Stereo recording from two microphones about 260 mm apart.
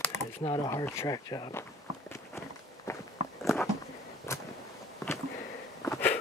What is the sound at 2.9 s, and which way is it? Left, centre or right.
Biting, centre.